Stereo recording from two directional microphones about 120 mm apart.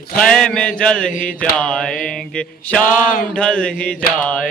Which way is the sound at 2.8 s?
90° left.